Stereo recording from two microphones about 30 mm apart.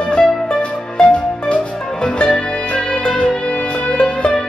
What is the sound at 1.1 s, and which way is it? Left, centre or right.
Music, left.